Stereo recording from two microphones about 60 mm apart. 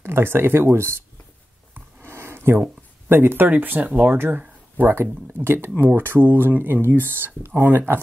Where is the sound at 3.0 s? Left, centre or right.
Right.